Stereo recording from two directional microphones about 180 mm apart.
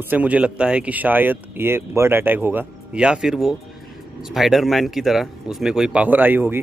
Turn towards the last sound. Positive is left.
turn(degrees=-10)  # may be behind; listen again after turning